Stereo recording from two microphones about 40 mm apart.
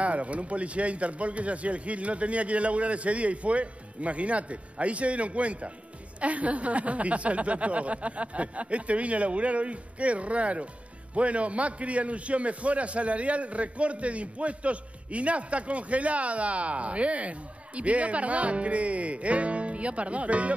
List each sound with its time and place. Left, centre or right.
0.0 s a man's voice: right